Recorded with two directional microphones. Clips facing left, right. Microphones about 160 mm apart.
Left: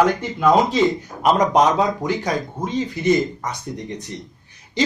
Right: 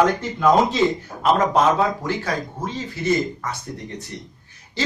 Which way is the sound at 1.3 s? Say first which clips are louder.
Left 1 dB; 15° left (ahead or behind).